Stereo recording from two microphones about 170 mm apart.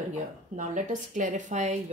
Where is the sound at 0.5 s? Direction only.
45° right (ahead or behind).